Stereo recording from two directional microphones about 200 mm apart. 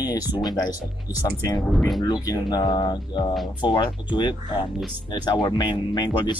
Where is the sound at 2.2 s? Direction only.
20° left (ahead or behind).